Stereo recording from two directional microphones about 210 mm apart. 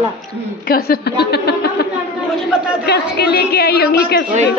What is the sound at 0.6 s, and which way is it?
A woman's voice, 45° left (ahead or behind).